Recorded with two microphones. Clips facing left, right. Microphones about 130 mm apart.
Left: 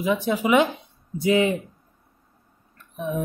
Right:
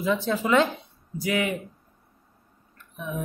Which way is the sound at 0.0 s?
15° left (ahead or behind).